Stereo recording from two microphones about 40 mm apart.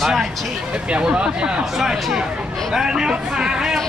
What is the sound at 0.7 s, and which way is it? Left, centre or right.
Speech, right.